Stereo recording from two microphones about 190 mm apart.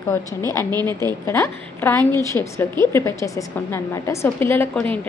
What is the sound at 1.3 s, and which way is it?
A woman's voice, 15° left (ahead or behind).